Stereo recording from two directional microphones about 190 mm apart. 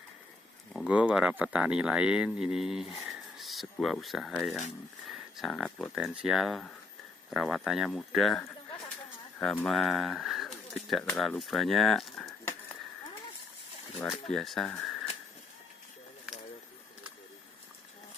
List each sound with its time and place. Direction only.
0.7 s speech: 5° right (ahead or behind)
14.0 s speech: centre (ahead or behind)